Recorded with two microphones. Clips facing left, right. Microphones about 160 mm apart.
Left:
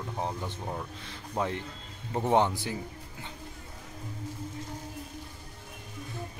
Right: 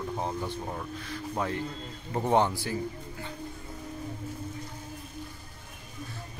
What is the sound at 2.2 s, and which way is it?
Speech, 15° left (ahead or behind).